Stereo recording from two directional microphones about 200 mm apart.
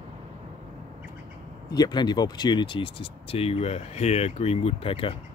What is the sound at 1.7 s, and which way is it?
Speech, 20° left (ahead or behind).